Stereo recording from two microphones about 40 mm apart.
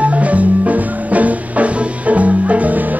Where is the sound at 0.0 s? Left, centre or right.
Right.